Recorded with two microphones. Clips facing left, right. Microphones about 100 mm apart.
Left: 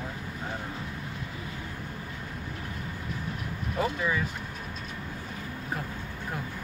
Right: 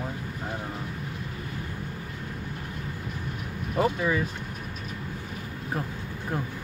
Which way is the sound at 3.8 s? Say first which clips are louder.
Right 4 dB; 45° right (ahead or behind).